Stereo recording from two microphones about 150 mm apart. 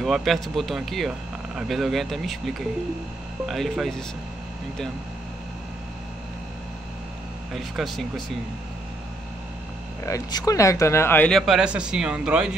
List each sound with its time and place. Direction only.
0.0 s a man's voice: centre (ahead or behind)
7.5 s a man's voice: centre (ahead or behind)
10.0 s speech: 20° left (ahead or behind)
11.3 s a man's voice: 5° right (ahead or behind)